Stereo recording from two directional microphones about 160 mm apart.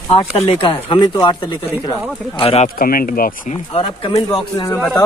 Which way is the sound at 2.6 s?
65° left (ahead or behind).